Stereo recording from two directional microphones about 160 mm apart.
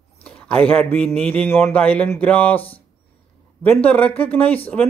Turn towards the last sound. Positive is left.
turn(degrees=10)  # may be behind; listen again after turning